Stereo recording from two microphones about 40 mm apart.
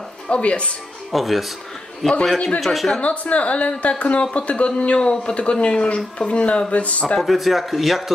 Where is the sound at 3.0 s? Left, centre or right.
Left.